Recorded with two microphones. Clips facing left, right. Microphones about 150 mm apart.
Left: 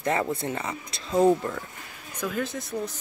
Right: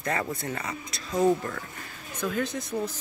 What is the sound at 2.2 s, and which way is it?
Speech, 5° left (ahead or behind).